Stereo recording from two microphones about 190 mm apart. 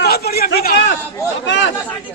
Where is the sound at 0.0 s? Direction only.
55° left (ahead or behind).